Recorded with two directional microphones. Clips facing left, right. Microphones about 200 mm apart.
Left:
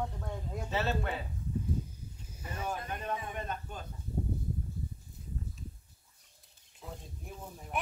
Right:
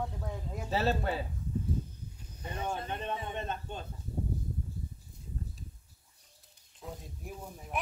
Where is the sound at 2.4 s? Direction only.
25° right (ahead or behind).